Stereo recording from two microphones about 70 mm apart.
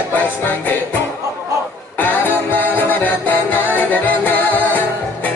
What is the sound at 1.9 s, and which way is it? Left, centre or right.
Music, left.